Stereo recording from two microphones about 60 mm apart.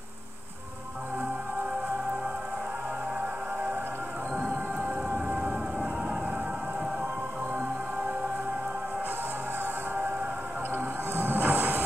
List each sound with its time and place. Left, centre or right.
5.1 s vehicle: right
10.7 s train: right